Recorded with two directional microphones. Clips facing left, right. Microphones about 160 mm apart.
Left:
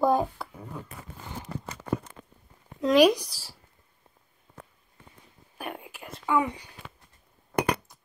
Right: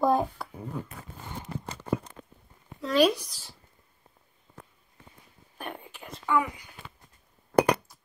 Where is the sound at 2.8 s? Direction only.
15° left (ahead or behind).